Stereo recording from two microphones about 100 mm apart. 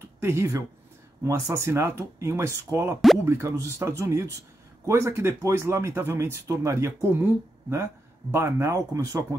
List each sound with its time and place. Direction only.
0.2 s speech: 25° right (ahead or behind)